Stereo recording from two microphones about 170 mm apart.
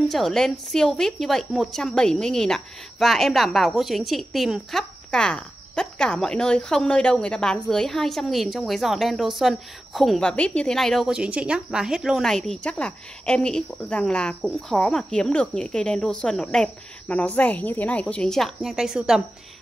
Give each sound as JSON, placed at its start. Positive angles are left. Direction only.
{"t": 0.1, "sound": "a woman's voice", "side_deg": 0}